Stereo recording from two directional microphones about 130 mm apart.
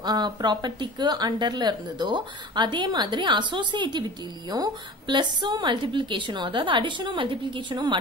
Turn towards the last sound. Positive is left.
turn(degrees=-35)  # may be behind; listen again after turning